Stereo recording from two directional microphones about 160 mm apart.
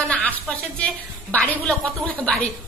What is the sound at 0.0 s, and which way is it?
A woman's voice, 10° left (ahead or behind).